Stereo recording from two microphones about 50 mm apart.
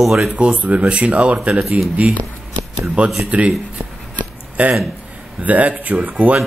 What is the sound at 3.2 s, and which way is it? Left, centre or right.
Speech, right.